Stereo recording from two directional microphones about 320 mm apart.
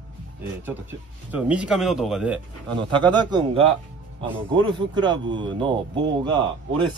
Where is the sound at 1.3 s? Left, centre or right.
Centre.